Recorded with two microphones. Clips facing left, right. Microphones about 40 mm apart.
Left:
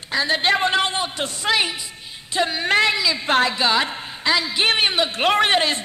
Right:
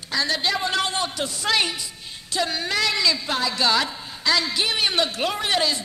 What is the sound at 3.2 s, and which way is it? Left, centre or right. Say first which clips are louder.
Speech: left 7 dB; left.